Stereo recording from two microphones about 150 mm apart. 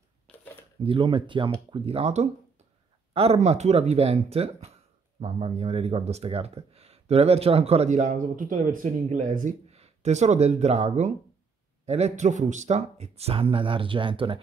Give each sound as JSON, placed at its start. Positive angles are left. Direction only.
{"t": 0.8, "sound": "speech", "side_deg": -35}